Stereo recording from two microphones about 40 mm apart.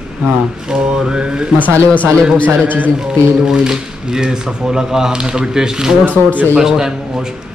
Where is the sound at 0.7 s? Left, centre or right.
Right.